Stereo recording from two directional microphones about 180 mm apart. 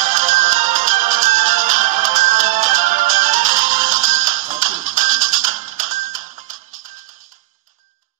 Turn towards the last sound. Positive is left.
turn(degrees=-45)  # may be behind; listen again after turning